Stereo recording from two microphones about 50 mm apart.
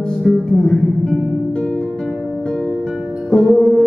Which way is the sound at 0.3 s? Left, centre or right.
Centre.